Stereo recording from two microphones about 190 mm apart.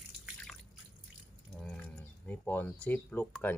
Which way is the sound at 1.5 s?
5° left (ahead or behind).